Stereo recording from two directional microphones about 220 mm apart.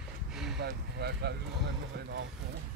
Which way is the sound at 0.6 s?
50° right (ahead or behind).